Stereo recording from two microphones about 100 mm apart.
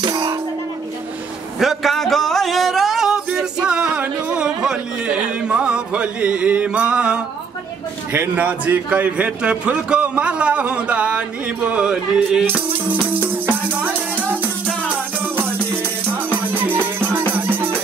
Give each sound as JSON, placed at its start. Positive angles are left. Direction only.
{"t": 0.0, "sound": "music", "side_deg": -45}
{"t": 1.6, "sound": "a sound", "side_deg": 0}
{"t": 8.1, "sound": "a man's voice", "side_deg": -15}
{"t": 13.7, "sound": "music", "side_deg": -15}
{"t": 16.1, "sound": "music", "side_deg": -20}